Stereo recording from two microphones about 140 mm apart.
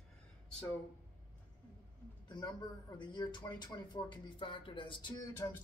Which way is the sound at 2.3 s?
30° left (ahead or behind).